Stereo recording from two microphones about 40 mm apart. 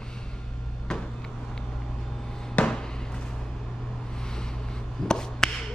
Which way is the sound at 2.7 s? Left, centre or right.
Centre.